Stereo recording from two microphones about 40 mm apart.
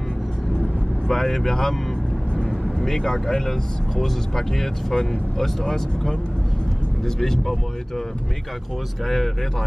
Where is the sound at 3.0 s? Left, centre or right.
Centre.